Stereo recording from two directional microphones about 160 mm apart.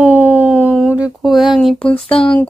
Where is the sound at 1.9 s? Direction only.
35° left (ahead or behind).